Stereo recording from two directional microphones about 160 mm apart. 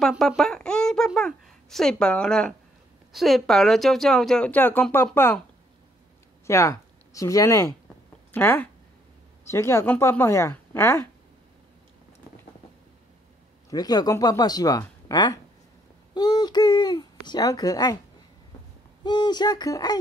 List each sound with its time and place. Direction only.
0.1 s a sound: centre (ahead or behind)
3.1 s speech: centre (ahead or behind)
6.4 s speech: 20° left (ahead or behind)
13.7 s speech: 25° left (ahead or behind)
19.0 s speech: 25° left (ahead or behind)